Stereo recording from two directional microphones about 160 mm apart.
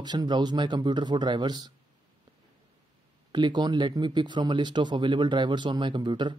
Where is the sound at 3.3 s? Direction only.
30° right (ahead or behind).